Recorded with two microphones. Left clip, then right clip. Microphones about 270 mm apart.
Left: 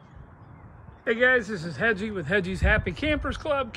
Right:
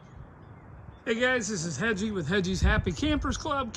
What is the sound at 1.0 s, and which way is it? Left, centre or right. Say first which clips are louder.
Speech: left 5 dB; centre.